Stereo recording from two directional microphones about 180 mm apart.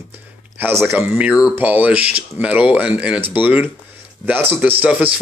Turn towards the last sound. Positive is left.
turn(degrees=-10)  # may be behind; listen again after turning